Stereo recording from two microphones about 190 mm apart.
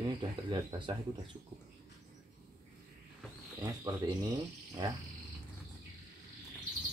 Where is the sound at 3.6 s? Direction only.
20° right (ahead or behind).